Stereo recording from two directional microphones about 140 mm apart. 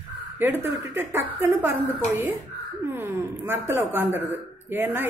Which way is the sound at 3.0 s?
15° right (ahead or behind).